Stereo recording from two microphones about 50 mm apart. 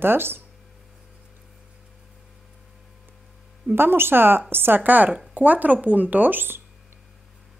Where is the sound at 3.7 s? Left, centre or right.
Right.